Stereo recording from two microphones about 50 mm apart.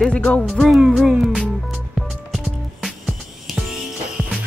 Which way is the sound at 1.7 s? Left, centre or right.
Centre.